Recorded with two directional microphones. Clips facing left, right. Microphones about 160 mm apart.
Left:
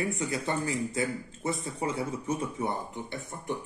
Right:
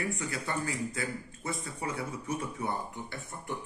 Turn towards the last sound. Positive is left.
turn(degrees=20)  # may be behind; listen again after turning